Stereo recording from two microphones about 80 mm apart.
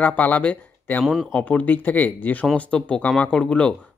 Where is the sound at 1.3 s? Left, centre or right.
Centre.